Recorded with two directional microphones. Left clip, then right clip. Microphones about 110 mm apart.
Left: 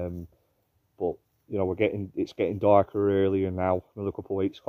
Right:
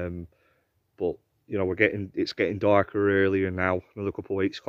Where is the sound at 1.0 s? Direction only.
10° left (ahead or behind).